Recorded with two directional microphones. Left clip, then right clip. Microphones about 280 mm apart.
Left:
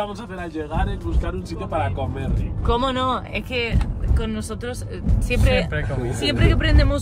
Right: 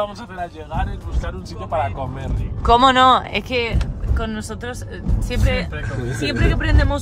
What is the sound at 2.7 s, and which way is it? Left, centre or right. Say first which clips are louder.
Speech: right 10 dB; right.